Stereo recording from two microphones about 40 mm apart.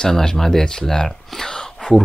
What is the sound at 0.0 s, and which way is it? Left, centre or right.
Speech, centre.